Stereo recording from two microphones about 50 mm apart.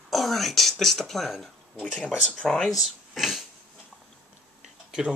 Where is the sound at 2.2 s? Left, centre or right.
Centre.